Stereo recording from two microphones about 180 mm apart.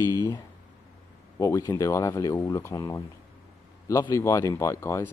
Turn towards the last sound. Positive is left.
turn(degrees=15)  # may be behind; listen again after turning